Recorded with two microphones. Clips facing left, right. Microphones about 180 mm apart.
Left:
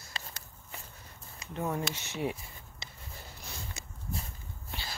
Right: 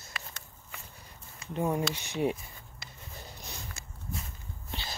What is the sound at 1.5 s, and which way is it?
Speech, 15° right (ahead or behind).